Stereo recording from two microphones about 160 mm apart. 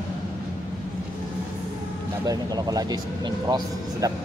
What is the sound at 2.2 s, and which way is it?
Speech, 25° right (ahead or behind).